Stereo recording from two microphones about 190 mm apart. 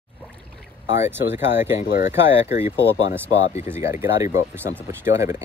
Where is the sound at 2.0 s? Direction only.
35° left (ahead or behind).